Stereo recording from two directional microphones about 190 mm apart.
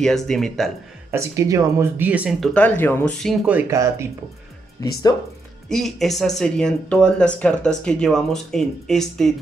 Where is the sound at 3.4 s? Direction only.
10° right (ahead or behind).